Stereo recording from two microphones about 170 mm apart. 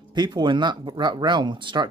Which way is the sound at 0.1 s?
25° right (ahead or behind).